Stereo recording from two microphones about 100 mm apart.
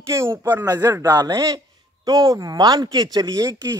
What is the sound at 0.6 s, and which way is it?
A man's voice, 40° right (ahead or behind).